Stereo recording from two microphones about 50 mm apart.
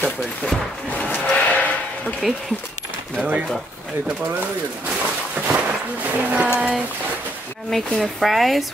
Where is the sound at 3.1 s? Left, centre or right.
Right.